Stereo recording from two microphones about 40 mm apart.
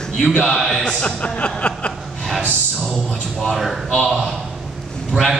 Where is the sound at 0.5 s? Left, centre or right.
Centre.